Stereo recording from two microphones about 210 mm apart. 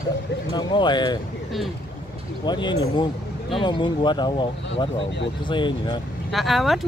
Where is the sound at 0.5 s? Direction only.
20° left (ahead or behind).